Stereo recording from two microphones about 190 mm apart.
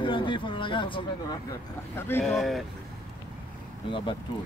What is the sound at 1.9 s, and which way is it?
Speech, 10° left (ahead or behind).